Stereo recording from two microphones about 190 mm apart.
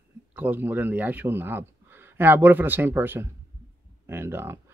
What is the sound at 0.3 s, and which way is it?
Speech, 10° right (ahead or behind).